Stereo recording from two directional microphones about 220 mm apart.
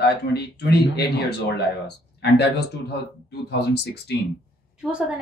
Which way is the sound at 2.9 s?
50° left (ahead or behind).